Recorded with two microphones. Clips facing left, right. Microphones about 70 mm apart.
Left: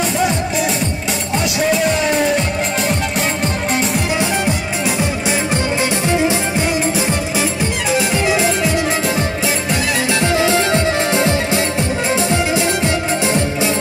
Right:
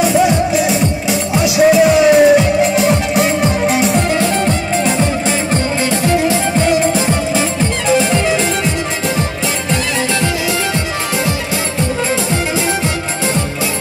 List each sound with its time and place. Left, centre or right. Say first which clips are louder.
1.4 s music: right 8 dB; centre